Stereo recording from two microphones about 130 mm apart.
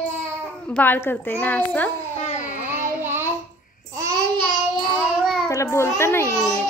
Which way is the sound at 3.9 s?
25° right (ahead or behind).